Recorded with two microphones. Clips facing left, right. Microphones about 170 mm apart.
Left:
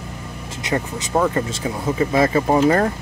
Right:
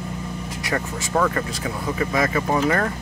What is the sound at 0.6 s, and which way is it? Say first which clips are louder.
Speech: left 4 dB; 20° left (ahead or behind).